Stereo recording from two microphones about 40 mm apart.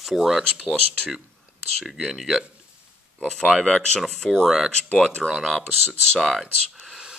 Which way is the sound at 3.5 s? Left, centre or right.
Centre.